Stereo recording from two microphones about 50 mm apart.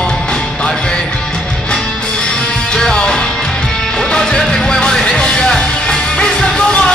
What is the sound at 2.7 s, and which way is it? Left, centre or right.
Music, centre.